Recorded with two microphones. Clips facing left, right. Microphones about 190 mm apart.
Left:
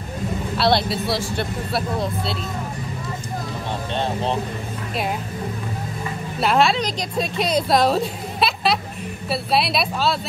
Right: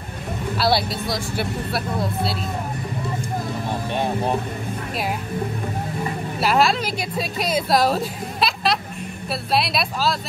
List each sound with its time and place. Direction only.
0.6 s speech: 5° right (ahead or behind)
3.9 s speech: 10° right (ahead or behind)
6.4 s speech: centre (ahead or behind)